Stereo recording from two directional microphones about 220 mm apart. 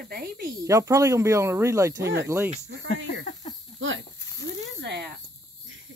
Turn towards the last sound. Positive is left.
turn(degrees=-50)  # may be behind; listen again after turning